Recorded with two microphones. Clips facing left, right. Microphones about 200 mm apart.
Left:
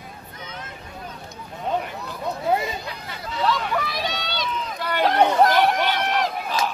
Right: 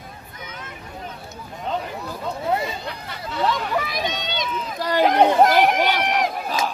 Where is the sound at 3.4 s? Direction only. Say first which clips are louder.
Even; 20° right (ahead or behind).